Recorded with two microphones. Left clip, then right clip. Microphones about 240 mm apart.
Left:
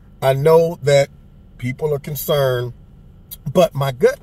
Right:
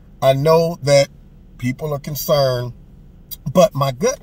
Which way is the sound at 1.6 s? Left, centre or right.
Centre.